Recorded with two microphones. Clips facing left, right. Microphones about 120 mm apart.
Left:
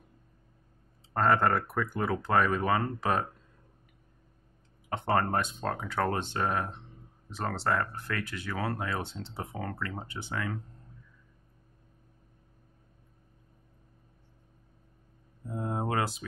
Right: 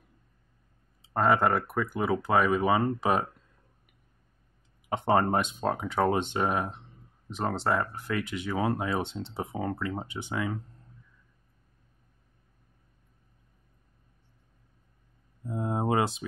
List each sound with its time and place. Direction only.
1.1 s speech: 10° right (ahead or behind)
4.8 s speech: 15° right (ahead or behind)
15.5 s speech: 15° right (ahead or behind)